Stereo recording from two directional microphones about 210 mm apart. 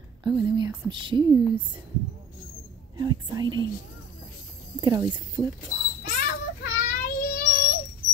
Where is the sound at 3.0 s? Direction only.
20° right (ahead or behind).